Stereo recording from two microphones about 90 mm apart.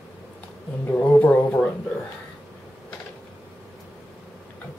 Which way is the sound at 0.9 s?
20° left (ahead or behind).